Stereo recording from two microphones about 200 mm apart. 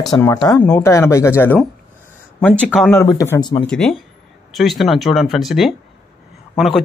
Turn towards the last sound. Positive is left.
turn(degrees=0)  # may be behind; listen again after turning